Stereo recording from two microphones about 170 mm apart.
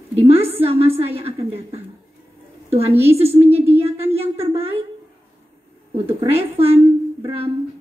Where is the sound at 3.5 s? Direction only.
15° right (ahead or behind).